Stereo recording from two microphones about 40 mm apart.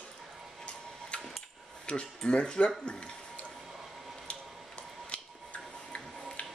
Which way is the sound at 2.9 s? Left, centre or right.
Left.